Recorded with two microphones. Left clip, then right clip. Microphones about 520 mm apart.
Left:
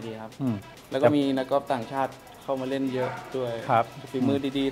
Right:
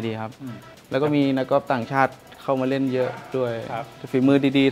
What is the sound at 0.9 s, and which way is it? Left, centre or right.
Speech, right.